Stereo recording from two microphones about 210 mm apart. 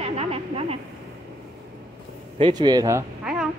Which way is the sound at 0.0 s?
30° right (ahead or behind).